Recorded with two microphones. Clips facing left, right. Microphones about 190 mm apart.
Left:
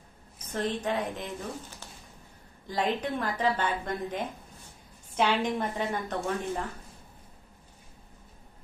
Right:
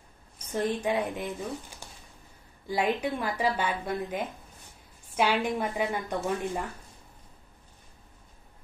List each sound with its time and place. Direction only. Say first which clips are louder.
0.5 s a woman's voice: right 2 dB; 10° right (ahead or behind)
1.8 s a sound: even; 10° right (ahead or behind)
2.6 s a woman's voice: right 2 dB; 10° right (ahead or behind)